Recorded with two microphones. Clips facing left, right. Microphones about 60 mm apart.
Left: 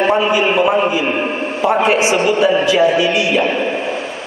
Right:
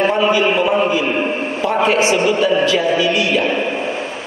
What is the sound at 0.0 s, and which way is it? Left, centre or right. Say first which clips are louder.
A man's voice: left 1 dB; left.